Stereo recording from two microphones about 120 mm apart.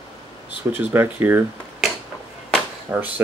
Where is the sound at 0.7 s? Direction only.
15° right (ahead or behind).